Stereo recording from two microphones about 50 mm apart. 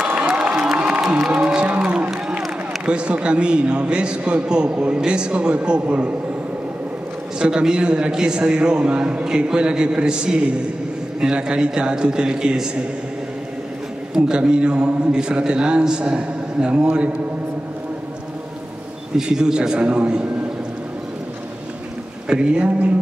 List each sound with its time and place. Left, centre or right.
0.3 s crowd: centre
1.0 s speech: centre
2.0 s a sound: centre
2.8 s a man's voice: right
7.3 s a man's voice: centre
14.1 s a man's voice: centre
19.1 s a man's voice: centre
22.3 s a man's voice: centre